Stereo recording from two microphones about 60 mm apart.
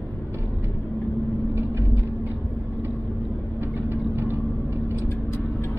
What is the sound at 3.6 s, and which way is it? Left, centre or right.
Vehicle, right.